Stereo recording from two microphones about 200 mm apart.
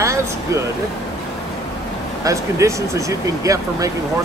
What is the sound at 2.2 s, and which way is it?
Speech, 15° right (ahead or behind).